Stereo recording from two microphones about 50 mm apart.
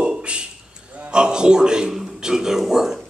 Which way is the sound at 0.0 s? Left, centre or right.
Centre.